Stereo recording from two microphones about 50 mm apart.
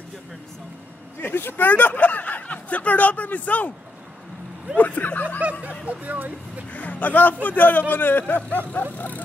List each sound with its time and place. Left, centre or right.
1.2 s speech: left
4.7 s speech: left
5.4 s speech: right
6.7 s speech: left